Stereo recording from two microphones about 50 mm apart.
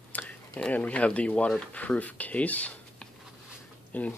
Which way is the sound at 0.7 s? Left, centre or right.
Left.